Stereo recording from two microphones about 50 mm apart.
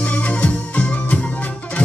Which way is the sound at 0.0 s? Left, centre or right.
Left.